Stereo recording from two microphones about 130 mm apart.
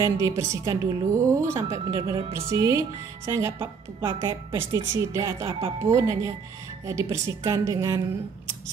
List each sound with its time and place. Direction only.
0.0 s a woman's voice: 25° right (ahead or behind)
1.9 s a woman's voice: 35° right (ahead or behind)